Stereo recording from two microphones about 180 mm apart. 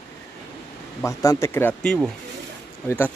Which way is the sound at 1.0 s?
20° left (ahead or behind).